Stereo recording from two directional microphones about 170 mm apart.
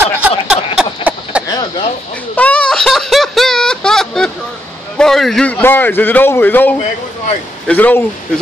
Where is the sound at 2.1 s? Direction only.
10° left (ahead or behind).